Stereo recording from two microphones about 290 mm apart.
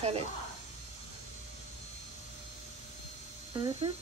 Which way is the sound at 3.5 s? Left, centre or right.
Centre.